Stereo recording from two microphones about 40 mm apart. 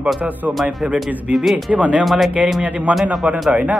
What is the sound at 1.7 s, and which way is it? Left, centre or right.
Speech, right.